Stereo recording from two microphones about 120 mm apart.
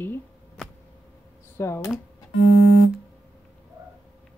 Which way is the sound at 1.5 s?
25° left (ahead or behind).